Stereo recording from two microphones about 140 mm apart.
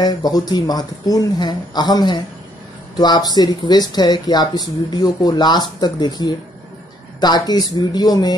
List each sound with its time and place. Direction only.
0.0 s speech: 30° left (ahead or behind)